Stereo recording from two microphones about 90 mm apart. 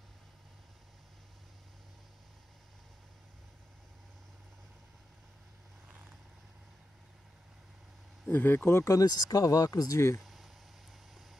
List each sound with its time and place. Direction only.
8.3 s speech: 20° left (ahead or behind)
8.8 s speech: 40° left (ahead or behind)
10.2 s a sound: centre (ahead or behind)